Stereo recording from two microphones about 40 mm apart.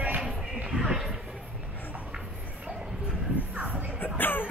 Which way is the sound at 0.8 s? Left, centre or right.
Centre.